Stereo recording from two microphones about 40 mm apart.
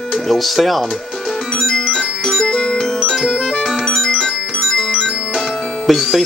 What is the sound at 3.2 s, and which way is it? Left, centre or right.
Music, centre.